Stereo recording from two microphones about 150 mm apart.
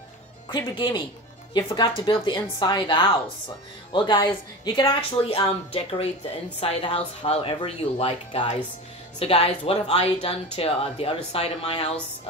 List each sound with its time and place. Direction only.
0.5 s speech: 30° left (ahead or behind)